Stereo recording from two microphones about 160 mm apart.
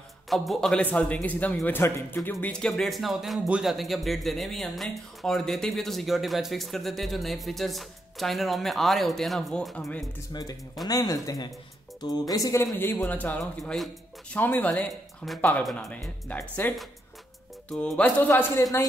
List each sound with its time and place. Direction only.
0.3 s speech: centre (ahead or behind)
10.9 s speech: 20° left (ahead or behind)